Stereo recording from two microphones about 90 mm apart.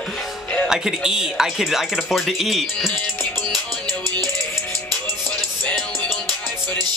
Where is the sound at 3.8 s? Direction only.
45° right (ahead or behind).